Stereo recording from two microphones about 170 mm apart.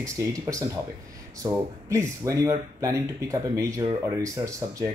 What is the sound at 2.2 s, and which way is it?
Speech, 20° right (ahead or behind).